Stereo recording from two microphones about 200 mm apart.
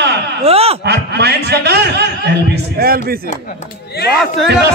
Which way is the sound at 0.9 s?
55° right (ahead or behind).